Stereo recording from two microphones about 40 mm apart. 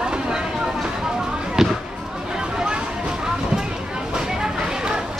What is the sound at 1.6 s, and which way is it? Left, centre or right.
Basketball bounce, centre.